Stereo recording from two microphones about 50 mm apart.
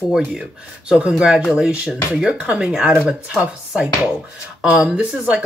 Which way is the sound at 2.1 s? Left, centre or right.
Centre.